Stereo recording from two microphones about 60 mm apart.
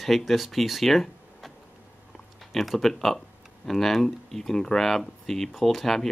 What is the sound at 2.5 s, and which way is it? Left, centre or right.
Speech, centre.